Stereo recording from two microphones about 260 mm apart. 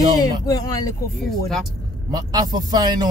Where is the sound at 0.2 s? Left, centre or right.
Centre.